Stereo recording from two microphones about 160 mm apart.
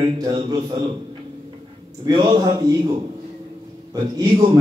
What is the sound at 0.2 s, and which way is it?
Speech, 25° right (ahead or behind).